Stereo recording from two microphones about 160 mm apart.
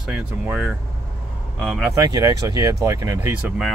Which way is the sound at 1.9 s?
20° right (ahead or behind).